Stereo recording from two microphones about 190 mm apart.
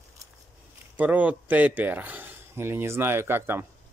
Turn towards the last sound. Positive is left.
turn(degrees=-10)  # may be behind; listen again after turning